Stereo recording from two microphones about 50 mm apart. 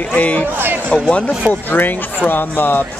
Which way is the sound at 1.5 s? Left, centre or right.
Left.